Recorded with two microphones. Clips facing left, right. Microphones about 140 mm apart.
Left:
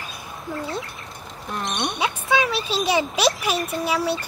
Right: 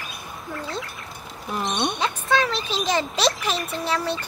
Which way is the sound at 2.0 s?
5° left (ahead or behind).